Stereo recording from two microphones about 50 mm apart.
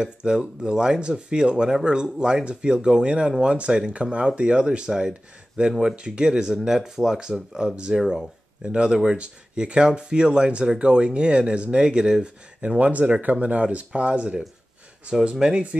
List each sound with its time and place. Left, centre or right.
0.0 s speech: centre
8.0 s speech: centre
8.6 s speech: right
15.4 s speech: right